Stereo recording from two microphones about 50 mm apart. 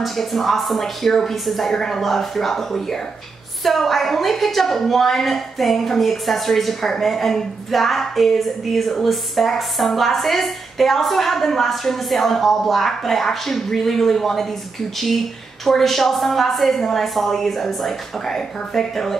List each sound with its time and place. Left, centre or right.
0.0 s a woman's voice: centre